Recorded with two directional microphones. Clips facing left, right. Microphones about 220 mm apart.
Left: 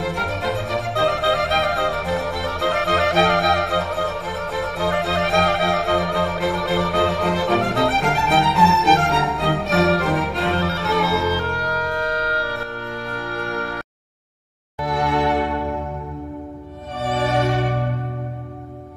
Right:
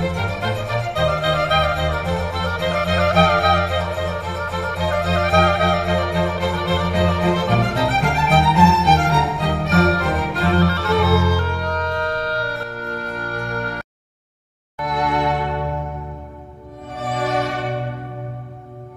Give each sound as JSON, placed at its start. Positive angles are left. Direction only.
{"t": 0.0, "sound": "music", "side_deg": 0}
{"t": 14.9, "sound": "music", "side_deg": 30}
{"t": 17.0, "sound": "music", "side_deg": 25}